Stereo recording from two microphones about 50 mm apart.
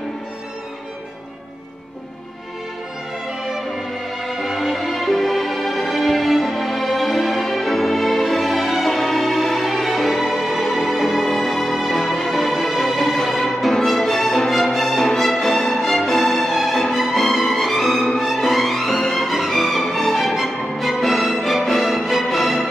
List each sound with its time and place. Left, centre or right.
3.4 s music: centre